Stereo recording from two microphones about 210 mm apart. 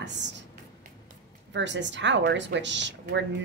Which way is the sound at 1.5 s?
60° right (ahead or behind).